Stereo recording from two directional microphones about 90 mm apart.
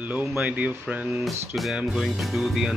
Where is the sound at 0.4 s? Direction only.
15° right (ahead or behind).